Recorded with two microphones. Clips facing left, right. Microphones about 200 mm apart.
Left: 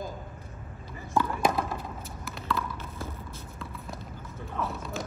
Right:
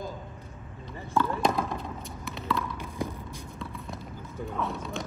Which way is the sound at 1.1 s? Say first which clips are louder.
Even; 5° left (ahead or behind).